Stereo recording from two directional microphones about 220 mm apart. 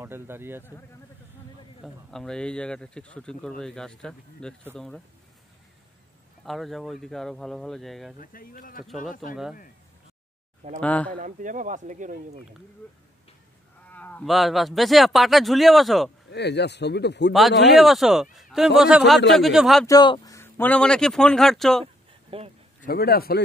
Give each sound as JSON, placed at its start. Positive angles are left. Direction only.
{"t": 0.0, "sound": "a man's voice", "side_deg": -10}
{"t": 2.0, "sound": "speech", "side_deg": 0}
{"t": 6.4, "sound": "speech", "side_deg": 0}
{"t": 8.2, "sound": "speech", "side_deg": 40}
{"t": 9.3, "sound": "speech", "side_deg": -5}
{"t": 10.8, "sound": "speech", "side_deg": 5}
{"t": 11.1, "sound": "speech", "side_deg": -35}
{"t": 13.8, "sound": "speech", "side_deg": 5}
{"t": 16.3, "sound": "a man's voice", "side_deg": 50}
{"t": 17.3, "sound": "speech", "side_deg": 0}
{"t": 19.9, "sound": "speech", "side_deg": 15}
{"t": 21.8, "sound": "a sound", "side_deg": -25}
{"t": 22.8, "sound": "a man's voice", "side_deg": 45}